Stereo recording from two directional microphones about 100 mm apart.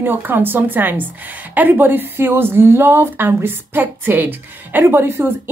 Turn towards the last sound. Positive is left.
turn(degrees=-25)  # may be behind; listen again after turning